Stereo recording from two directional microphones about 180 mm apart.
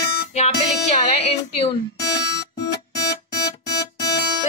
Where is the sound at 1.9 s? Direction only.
70° left (ahead or behind).